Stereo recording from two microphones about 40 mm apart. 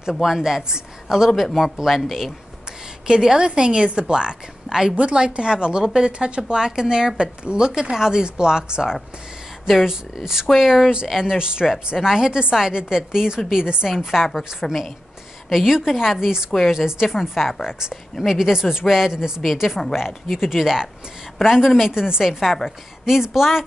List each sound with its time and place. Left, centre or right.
0.2 s a woman's voice: centre
3.1 s a woman's voice: centre
4.9 s a woman's voice: right; by 11.3 s centre
11.3 s a woman's voice: right
13.9 s a woman's voice: centre
17.6 s a woman's voice: centre